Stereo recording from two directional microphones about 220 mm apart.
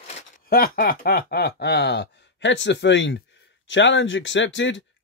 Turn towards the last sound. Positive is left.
turn(degrees=55)  # may be behind; listen again after turning